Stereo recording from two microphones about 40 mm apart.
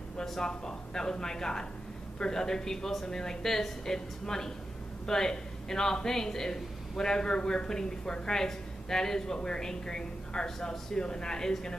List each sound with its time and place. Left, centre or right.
0.2 s speech: centre